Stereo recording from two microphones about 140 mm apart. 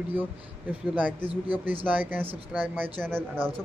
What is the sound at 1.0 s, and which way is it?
Speech, 10° right (ahead or behind).